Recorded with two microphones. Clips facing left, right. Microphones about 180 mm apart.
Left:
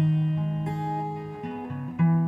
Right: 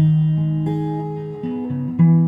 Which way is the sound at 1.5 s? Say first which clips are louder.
Right 14 dB; 30° right (ahead or behind).